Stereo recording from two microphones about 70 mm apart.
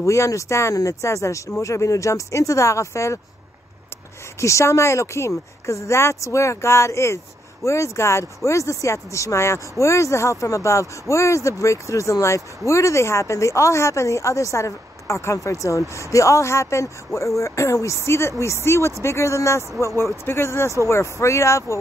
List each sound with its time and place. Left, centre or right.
0.0 s speech: left
4.4 s speech: left